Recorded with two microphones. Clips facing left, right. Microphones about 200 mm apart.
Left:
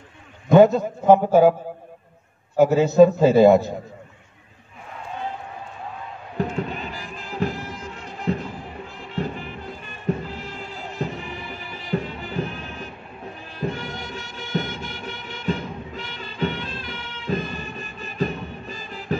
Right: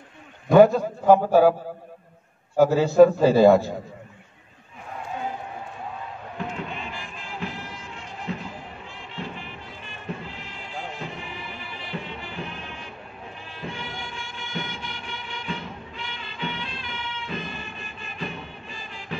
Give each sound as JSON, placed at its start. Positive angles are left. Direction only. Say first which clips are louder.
{"t": 0.5, "sound": "a man's voice", "louder": "left 1 dB", "side_deg": 20}
{"t": 2.5, "sound": "a man's voice", "louder": "left 2 dB", "side_deg": 20}
{"t": 6.3, "sound": "music", "louder": "left 7 dB", "side_deg": 40}
{"t": 9.1, "sound": "music", "louder": "left 8 dB", "side_deg": 45}